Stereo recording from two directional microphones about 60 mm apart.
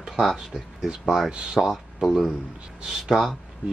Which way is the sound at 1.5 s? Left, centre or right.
Centre.